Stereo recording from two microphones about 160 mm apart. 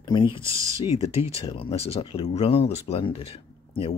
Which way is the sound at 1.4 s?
35° left (ahead or behind).